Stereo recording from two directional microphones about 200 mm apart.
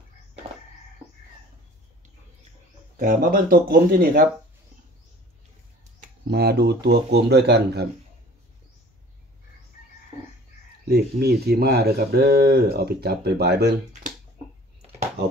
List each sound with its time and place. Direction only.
3.0 s speech: 45° right (ahead or behind)
5.9 s speech: 55° right (ahead or behind)
10.9 s speech: 55° right (ahead or behind)